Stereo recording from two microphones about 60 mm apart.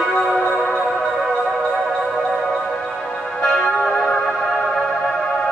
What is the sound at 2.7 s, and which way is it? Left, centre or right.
Music, centre.